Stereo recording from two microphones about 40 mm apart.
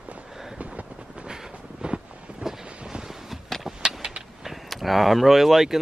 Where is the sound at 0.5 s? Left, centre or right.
Right.